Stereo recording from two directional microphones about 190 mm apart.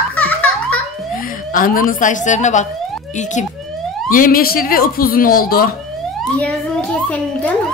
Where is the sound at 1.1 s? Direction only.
45° left (ahead or behind).